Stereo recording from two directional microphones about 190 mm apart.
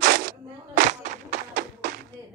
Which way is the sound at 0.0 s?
60° right (ahead or behind).